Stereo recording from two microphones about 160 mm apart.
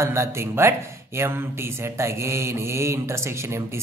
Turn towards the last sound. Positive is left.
turn(degrees=-15)  # may be behind; listen again after turning